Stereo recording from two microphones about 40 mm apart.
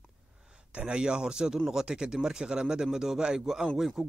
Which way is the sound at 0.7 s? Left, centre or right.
Right.